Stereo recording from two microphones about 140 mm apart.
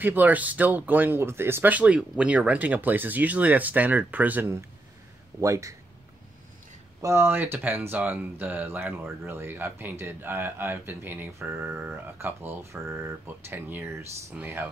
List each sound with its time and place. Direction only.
0.0 s speech: 10° right (ahead or behind)
7.0 s speech: 20° right (ahead or behind)